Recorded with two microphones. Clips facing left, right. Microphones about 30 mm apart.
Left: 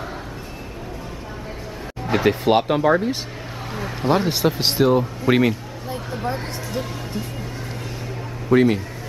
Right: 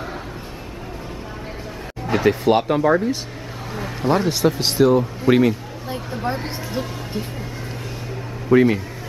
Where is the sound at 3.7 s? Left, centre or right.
Centre.